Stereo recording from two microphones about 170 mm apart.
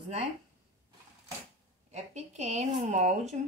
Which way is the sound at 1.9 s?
40° right (ahead or behind).